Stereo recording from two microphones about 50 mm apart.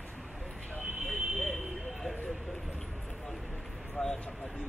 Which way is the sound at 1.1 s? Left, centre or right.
Centre.